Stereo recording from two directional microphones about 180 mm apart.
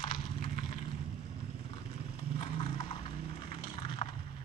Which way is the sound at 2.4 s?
30° left (ahead or behind).